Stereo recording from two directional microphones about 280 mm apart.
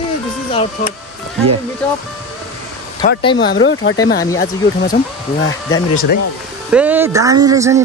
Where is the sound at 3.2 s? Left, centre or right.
Centre.